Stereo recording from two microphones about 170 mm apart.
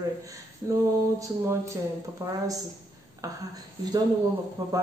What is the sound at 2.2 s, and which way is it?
Speech, 20° right (ahead or behind).